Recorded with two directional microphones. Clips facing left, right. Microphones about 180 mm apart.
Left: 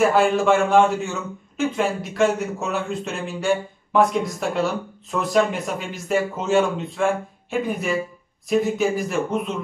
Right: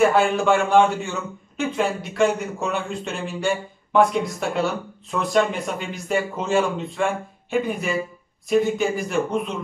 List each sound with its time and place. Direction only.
0.0 s speech: centre (ahead or behind)